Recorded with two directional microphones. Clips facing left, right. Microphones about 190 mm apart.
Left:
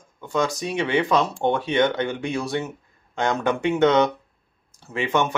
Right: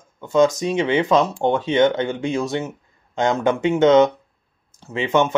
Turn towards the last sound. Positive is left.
turn(degrees=-20)  # may be behind; listen again after turning